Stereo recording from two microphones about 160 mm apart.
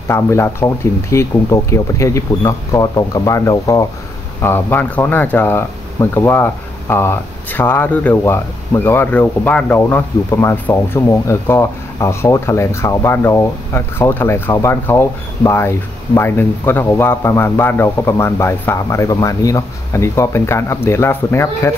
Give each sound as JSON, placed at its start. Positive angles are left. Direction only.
{"t": 0.1, "sound": "speech", "side_deg": 15}